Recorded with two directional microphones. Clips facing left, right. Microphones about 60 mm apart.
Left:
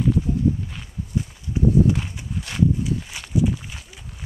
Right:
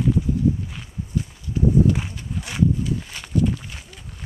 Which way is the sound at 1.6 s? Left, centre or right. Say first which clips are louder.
Even; left.